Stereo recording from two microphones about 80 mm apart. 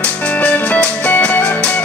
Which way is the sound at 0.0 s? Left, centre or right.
Centre.